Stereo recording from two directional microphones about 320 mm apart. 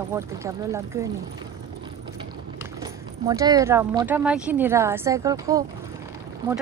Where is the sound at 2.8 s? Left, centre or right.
Centre.